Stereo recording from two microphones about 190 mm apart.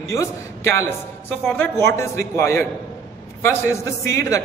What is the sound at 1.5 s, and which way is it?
A man's voice, 10° left (ahead or behind).